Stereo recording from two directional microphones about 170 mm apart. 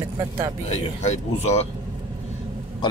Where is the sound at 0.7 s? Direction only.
40° left (ahead or behind).